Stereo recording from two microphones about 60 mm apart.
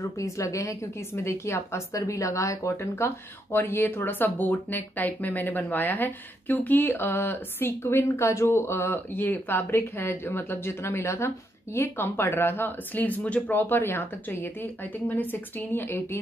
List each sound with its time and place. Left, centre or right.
0.0 s speech: left
1.1 s speech: left
3.0 s speech: left
13.5 s speech: left